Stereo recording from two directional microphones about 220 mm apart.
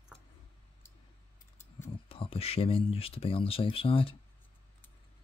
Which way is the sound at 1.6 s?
10° left (ahead or behind).